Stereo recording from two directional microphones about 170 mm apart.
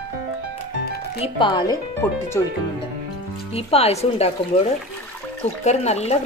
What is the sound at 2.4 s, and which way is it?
Speech, 15° left (ahead or behind).